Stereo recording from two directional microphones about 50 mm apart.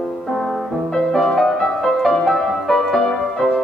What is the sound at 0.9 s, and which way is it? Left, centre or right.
Music, centre.